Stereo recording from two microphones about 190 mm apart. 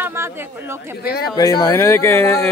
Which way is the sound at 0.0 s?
10° right (ahead or behind).